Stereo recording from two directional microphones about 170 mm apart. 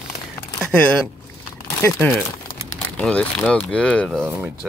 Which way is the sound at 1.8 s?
10° left (ahead or behind).